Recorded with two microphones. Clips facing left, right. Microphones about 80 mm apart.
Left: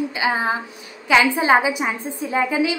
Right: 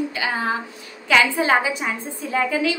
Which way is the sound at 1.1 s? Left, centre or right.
Centre.